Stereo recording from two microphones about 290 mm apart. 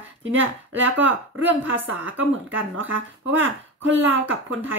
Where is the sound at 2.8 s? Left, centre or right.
Right.